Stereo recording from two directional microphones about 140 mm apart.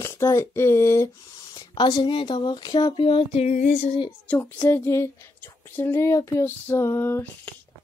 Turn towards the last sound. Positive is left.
turn(degrees=15)  # may be behind; listen again after turning